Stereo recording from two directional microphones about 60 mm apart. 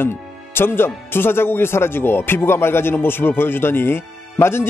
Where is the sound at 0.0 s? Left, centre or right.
Left.